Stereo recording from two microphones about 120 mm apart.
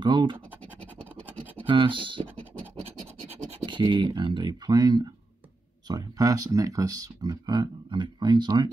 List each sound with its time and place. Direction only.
0.0 s speech: 40° right (ahead or behind)
1.6 s speech: 45° right (ahead or behind)
3.6 s speech: 40° right (ahead or behind)